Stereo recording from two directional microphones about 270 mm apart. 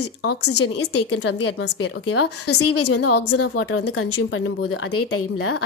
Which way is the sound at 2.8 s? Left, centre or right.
Left.